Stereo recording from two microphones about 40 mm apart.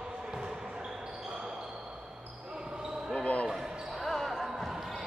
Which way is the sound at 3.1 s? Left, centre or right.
Left.